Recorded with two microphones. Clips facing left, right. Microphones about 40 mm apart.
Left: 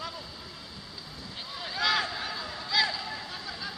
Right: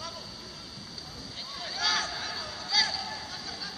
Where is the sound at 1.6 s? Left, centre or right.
Centre.